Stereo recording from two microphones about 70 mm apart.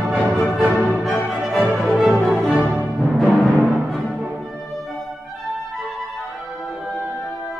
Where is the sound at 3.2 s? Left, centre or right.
Centre.